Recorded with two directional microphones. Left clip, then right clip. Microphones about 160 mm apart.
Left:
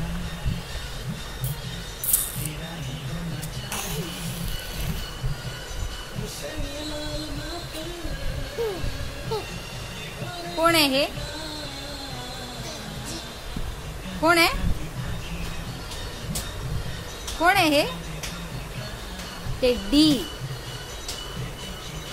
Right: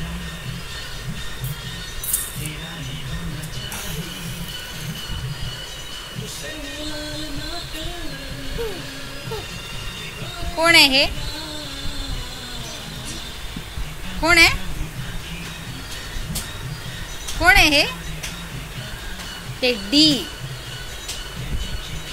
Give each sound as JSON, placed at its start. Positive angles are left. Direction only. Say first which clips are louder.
{"t": 10.6, "sound": "speech", "louder": "right 7 dB", "side_deg": 15}
{"t": 14.2, "sound": "a child's voice", "louder": "right 5 dB", "side_deg": 20}
{"t": 17.4, "sound": "speech", "louder": "right 5 dB", "side_deg": 20}
{"t": 19.6, "sound": "speech", "louder": "right 3 dB", "side_deg": 15}